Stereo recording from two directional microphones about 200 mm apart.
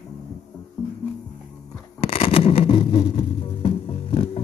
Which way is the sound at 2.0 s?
30° left (ahead or behind).